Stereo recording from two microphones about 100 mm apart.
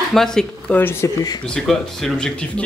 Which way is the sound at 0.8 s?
20° left (ahead or behind).